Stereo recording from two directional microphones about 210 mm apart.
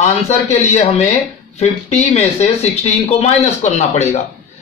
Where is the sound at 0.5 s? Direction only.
30° left (ahead or behind).